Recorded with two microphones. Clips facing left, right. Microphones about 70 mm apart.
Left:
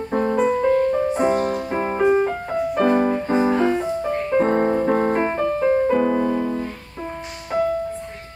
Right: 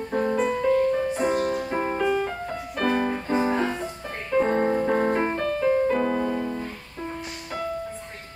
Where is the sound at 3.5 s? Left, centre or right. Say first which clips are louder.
Left 6 dB; centre.